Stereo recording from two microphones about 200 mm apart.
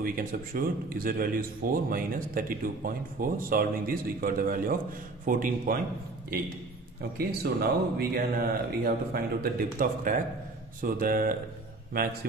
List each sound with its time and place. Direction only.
0.0 s speech: 45° right (ahead or behind)
7.2 s speech: 50° right (ahead or behind)